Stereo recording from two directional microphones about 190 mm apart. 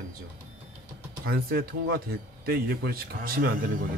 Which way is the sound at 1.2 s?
55° right (ahead or behind).